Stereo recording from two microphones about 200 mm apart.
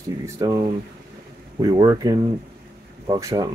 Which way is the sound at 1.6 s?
20° right (ahead or behind).